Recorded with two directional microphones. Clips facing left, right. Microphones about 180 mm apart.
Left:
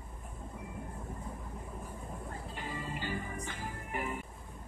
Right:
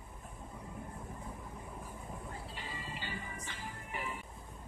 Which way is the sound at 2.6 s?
50° left (ahead or behind).